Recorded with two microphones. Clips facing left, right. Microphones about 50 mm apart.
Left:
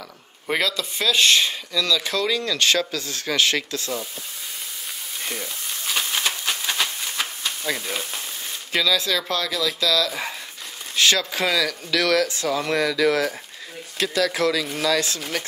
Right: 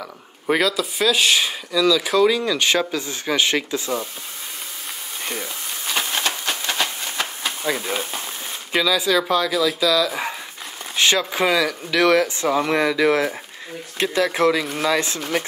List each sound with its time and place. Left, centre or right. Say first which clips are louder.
0.5 s speech: right 4 dB; centre
5.2 s frying: right 2 dB; centre
6.2 s a sound: right 1 dB; centre
7.4 s speech: right 5 dB; centre